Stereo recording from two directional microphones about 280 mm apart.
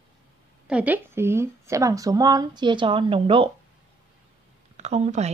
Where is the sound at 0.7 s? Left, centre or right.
Centre.